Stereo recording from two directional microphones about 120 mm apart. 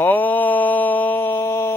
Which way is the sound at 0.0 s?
15° left (ahead or behind).